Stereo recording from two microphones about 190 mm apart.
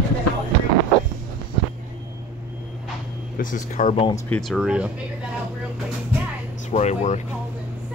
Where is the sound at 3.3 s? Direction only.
40° left (ahead or behind).